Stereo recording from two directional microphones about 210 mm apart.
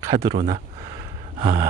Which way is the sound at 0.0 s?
15° right (ahead or behind).